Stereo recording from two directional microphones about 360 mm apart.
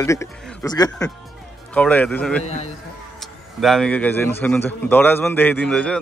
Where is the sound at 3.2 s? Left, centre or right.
Centre.